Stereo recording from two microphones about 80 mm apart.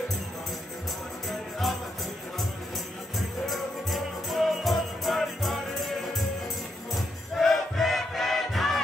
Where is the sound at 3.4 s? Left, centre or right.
Centre.